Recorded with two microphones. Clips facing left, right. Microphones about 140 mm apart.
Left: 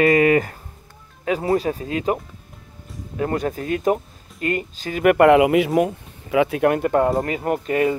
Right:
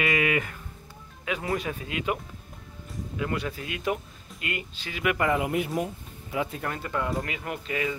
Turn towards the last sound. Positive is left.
turn(degrees=45)  # may be behind; listen again after turning